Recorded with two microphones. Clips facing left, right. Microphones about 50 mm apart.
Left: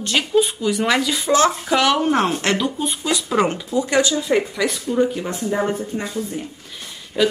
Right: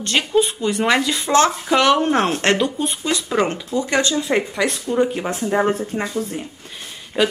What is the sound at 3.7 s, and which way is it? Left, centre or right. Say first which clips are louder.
Speech: left 1 dB; right.